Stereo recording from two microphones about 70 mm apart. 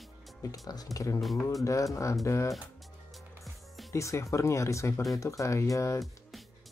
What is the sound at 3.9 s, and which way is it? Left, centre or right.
Speech, left.